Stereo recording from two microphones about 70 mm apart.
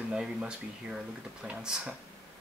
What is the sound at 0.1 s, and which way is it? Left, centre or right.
Speech, centre.